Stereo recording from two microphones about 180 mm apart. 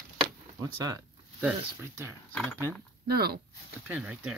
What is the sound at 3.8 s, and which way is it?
Speech, 5° right (ahead or behind).